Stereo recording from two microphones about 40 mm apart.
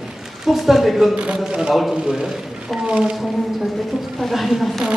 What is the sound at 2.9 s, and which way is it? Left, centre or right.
Speech, centre.